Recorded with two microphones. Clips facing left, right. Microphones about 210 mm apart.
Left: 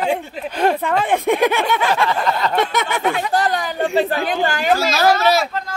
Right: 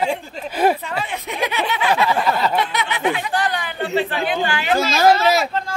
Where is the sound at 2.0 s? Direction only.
5° right (ahead or behind).